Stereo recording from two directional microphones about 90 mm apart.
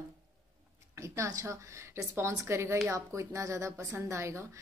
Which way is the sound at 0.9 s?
35° right (ahead or behind).